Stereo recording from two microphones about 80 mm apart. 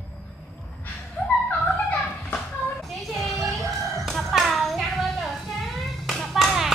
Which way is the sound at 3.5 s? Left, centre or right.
Centre.